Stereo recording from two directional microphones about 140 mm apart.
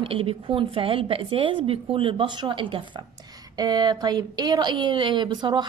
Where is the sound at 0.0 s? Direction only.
40° right (ahead or behind).